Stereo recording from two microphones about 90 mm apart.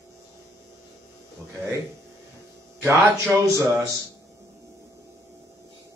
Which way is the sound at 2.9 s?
35° right (ahead or behind).